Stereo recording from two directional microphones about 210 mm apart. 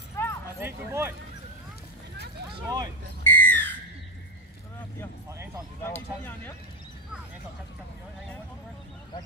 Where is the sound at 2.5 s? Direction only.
15° right (ahead or behind).